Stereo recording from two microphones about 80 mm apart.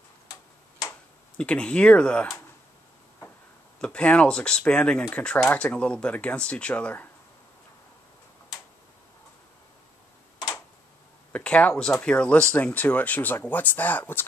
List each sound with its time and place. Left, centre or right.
1.4 s speech: centre
3.8 s speech: centre
11.3 s speech: centre